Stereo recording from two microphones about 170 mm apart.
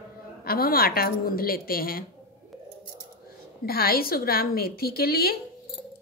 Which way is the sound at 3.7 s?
60° left (ahead or behind).